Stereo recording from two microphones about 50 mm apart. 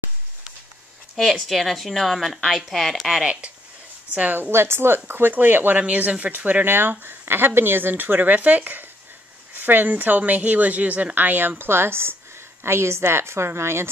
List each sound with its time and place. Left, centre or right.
1.1 s a woman's voice: centre
3.1 s speech: centre
4.1 s speech: right
4.5 s a woman's voice: right